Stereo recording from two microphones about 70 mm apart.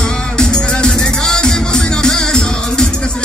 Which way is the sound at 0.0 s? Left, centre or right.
Centre.